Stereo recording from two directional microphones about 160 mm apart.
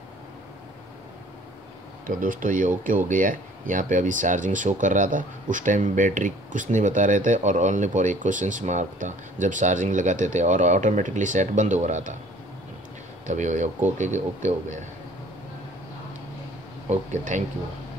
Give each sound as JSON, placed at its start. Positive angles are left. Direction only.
{"t": 2.0, "sound": "speech", "side_deg": -60}
{"t": 13.3, "sound": "speech", "side_deg": -50}
{"t": 16.9, "sound": "speech", "side_deg": -50}